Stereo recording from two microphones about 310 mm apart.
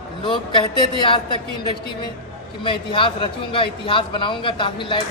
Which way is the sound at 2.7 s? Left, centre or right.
Centre.